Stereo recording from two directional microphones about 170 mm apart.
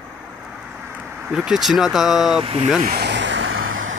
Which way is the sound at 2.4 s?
35° right (ahead or behind).